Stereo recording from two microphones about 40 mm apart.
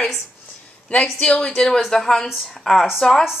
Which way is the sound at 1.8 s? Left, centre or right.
Centre.